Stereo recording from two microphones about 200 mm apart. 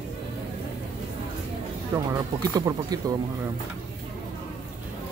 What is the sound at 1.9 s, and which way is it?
Speech, 15° right (ahead or behind).